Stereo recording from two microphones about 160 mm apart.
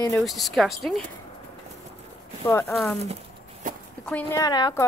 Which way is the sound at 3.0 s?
45° right (ahead or behind).